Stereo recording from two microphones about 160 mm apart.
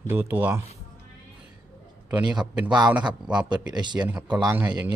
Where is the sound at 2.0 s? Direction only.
5° right (ahead or behind).